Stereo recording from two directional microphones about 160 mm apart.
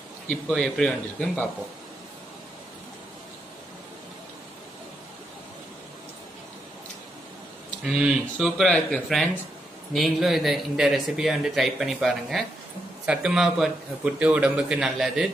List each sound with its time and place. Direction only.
0.3 s speech: 5° left (ahead or behind)
7.8 s speech: 5° right (ahead or behind)